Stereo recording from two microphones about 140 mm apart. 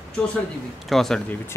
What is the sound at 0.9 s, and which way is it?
Speech, 5° left (ahead or behind).